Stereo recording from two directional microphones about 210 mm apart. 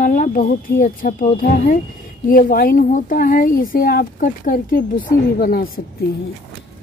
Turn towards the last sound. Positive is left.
turn(degrees=45)  # may be behind; listen again after turning